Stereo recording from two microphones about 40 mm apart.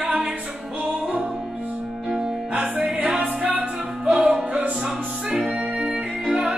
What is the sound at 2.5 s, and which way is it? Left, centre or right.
Music, right.